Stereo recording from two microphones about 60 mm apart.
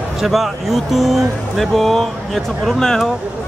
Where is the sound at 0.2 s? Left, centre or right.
Centre.